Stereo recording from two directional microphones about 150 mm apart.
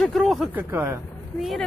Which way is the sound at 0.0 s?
Centre (ahead or behind).